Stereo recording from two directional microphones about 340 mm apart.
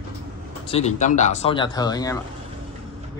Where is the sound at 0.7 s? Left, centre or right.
Centre.